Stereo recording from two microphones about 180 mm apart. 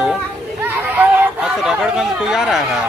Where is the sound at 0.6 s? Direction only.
10° right (ahead or behind).